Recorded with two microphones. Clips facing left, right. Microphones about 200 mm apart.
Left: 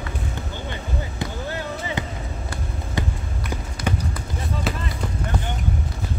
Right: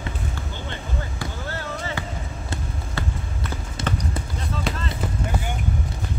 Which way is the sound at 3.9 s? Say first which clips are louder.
Left 2 dB; 10° left (ahead or behind).